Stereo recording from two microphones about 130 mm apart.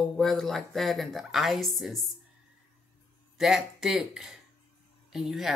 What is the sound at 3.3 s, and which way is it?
Speech, 5° right (ahead or behind).